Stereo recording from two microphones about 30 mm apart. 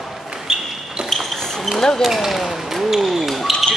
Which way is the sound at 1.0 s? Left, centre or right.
Right.